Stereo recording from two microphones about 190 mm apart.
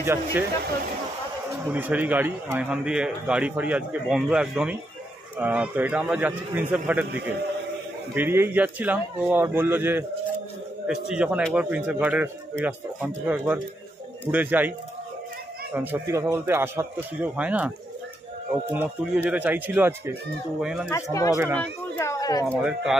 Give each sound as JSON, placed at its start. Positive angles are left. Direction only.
{"t": 0.0, "sound": "a man's voice", "side_deg": -10}
{"t": 1.7, "sound": "a man's voice", "side_deg": -10}
{"t": 8.1, "sound": "a man's voice", "side_deg": -10}
{"t": 15.7, "sound": "a man's voice", "side_deg": -10}
{"t": 20.9, "sound": "speech", "side_deg": 15}
{"t": 21.5, "sound": "a sound", "side_deg": 15}
{"t": 22.6, "sound": "a man's voice", "side_deg": -5}